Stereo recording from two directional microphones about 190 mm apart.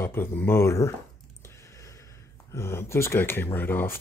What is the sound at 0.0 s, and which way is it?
Speech, 10° left (ahead or behind).